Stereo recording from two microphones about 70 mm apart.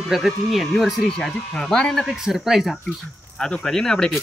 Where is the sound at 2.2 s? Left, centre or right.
Centre.